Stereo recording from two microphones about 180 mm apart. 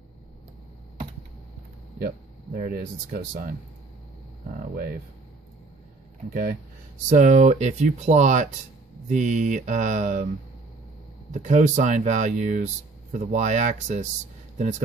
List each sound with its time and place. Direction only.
2.0 s speech: 55° right (ahead or behind)
4.6 s speech: 55° right (ahead or behind)
7.1 s speech: 45° right (ahead or behind)
11.3 s speech: 45° right (ahead or behind)